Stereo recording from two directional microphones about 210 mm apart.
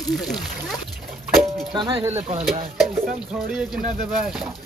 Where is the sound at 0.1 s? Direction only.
Centre (ahead or behind).